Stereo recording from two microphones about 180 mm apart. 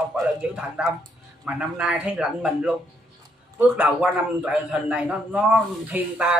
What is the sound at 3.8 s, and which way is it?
A man's voice, 5° right (ahead or behind).